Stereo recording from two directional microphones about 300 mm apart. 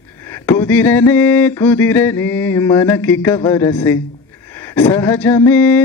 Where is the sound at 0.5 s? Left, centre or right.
Centre.